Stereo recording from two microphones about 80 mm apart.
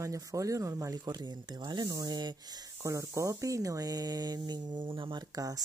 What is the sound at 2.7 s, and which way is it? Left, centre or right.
Speech, right.